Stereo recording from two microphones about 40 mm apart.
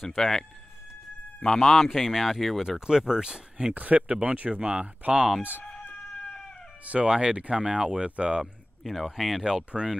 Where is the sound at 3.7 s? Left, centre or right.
Right.